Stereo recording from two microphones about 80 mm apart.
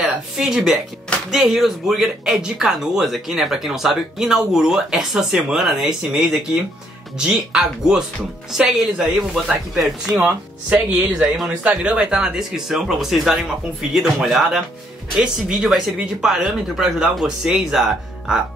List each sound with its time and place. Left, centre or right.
0.0 s speech: centre
10.2 s speech: centre